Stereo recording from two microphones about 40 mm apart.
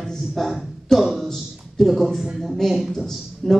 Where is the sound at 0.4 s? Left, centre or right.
Centre.